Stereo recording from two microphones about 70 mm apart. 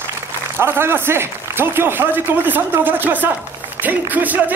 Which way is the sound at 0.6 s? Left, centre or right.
Right.